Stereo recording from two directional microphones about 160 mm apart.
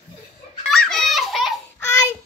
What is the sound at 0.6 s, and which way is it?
Children playing, 5° left (ahead or behind).